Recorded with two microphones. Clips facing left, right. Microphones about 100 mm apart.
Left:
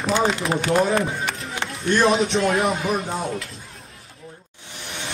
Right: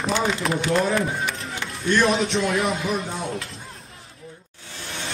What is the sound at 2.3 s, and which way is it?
Speech, 35° left (ahead or behind).